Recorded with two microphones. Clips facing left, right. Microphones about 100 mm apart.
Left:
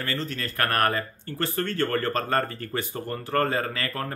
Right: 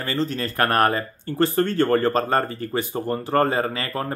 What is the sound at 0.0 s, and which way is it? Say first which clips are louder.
Speech: right 6 dB; 25° right (ahead or behind).